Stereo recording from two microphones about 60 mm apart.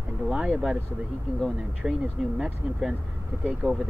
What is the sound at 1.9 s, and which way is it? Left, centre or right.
Speech, centre.